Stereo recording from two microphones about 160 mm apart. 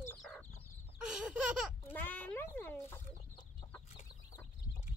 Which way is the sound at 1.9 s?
10° left (ahead or behind).